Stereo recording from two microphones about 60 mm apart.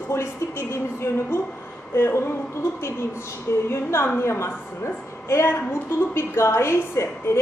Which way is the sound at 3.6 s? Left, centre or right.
Left.